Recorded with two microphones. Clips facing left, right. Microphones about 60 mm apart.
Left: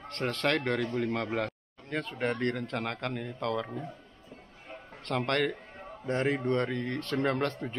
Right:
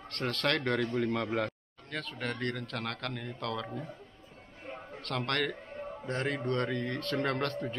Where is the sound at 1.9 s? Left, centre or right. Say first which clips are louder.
Left 5 dB; left.